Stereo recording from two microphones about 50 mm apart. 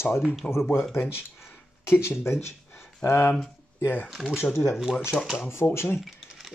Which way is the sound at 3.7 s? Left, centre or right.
Left.